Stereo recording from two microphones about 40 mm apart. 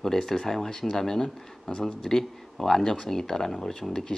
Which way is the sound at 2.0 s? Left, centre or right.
Centre.